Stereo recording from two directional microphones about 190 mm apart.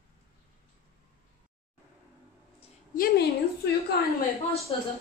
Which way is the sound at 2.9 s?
50° left (ahead or behind).